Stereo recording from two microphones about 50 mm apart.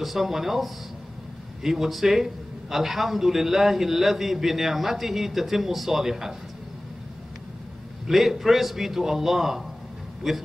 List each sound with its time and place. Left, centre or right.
0.0 s a man's voice: centre
8.1 s a man's voice: centre